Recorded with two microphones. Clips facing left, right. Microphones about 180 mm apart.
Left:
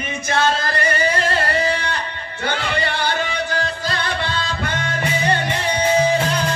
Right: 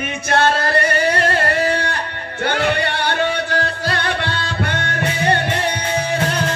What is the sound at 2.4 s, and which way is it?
Music, 60° right (ahead or behind).